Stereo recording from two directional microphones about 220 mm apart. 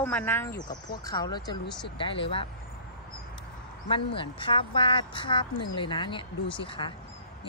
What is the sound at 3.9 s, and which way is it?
A woman's voice, 25° left (ahead or behind).